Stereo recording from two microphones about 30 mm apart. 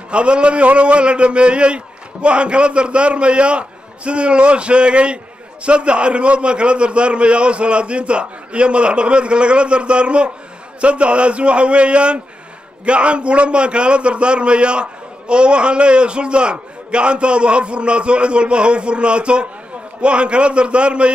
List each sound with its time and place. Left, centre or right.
0.1 s a man's voice: right